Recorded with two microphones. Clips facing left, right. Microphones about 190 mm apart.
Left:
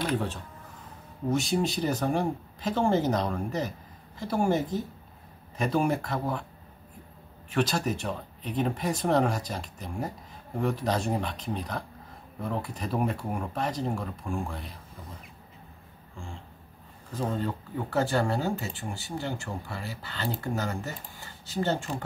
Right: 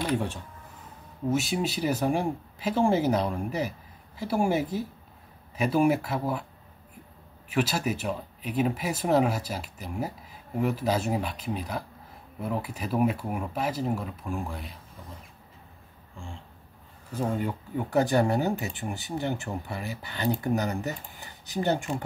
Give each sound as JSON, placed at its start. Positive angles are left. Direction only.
{"t": 0.0, "sound": "speech", "side_deg": -10}
{"t": 7.4, "sound": "speech", "side_deg": -10}
{"t": 17.1, "sound": "speech", "side_deg": -10}